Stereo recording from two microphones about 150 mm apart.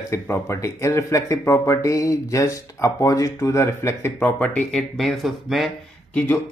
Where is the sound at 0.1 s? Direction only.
20° left (ahead or behind); by 5.7 s centre (ahead or behind).